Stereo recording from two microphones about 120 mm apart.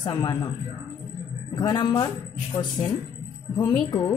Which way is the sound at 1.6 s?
35° left (ahead or behind).